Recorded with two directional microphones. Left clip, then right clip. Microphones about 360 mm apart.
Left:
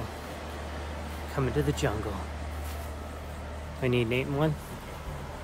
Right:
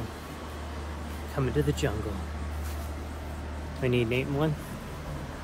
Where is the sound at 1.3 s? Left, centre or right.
Centre.